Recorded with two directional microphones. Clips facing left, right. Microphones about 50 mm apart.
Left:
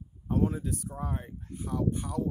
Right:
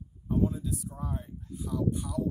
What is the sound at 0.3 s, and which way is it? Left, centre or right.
Speech, left.